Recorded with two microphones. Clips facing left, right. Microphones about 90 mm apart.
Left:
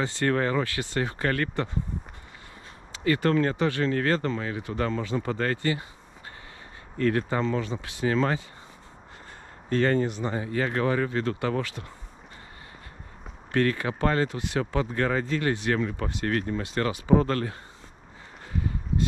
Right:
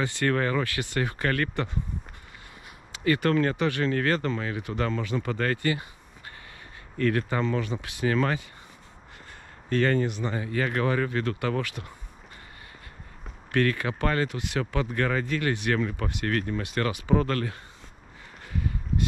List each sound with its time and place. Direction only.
0.0 s speech: 30° left (ahead or behind)
3.0 s speech: 30° left (ahead or behind)
7.0 s speech: 30° left (ahead or behind)
9.7 s speech: 25° left (ahead or behind)
13.5 s speech: 30° left (ahead or behind)